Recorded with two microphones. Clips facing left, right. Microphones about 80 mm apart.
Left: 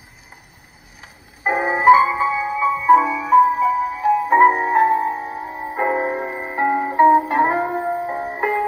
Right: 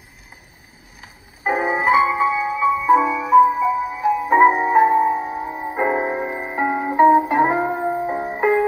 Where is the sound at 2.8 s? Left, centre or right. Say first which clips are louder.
Left 4 dB; centre.